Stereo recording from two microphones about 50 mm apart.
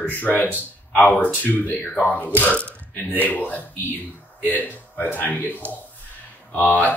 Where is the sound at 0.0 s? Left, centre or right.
Left.